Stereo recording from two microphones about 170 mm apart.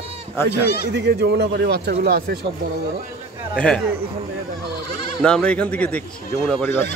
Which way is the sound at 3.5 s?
5° left (ahead or behind).